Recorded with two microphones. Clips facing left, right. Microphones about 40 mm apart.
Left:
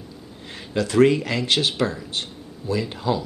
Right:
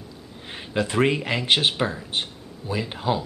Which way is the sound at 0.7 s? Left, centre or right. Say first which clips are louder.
Left 4 dB; right.